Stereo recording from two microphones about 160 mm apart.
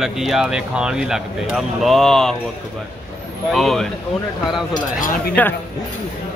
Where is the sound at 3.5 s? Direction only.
Centre (ahead or behind).